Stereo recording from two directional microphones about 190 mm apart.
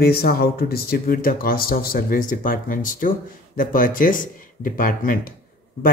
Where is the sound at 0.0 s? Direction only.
55° left (ahead or behind).